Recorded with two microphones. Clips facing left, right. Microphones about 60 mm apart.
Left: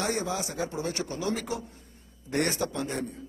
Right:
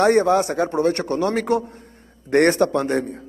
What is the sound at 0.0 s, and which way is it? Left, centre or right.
A man's voice, right.